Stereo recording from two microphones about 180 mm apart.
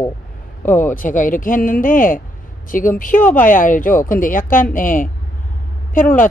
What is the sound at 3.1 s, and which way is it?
Speech, 10° left (ahead or behind).